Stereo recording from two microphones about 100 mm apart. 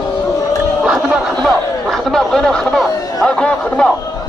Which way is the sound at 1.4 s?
5° left (ahead or behind).